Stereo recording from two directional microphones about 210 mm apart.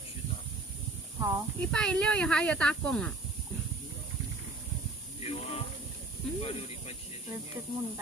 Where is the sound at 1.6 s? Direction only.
5° left (ahead or behind).